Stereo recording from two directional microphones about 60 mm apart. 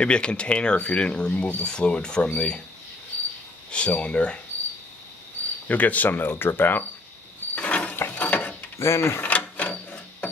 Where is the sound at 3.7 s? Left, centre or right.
Centre.